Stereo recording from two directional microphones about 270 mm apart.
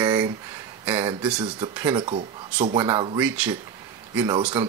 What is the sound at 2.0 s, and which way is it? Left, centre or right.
Speech, right.